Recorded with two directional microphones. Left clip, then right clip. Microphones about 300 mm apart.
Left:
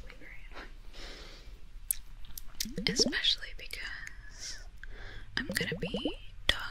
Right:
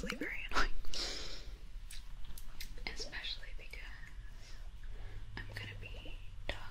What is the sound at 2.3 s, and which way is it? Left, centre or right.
Whispering, centre.